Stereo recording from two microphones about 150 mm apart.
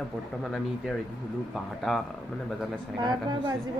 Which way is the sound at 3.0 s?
30° right (ahead or behind).